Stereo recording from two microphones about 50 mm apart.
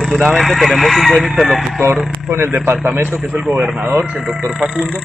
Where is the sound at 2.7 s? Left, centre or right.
Right.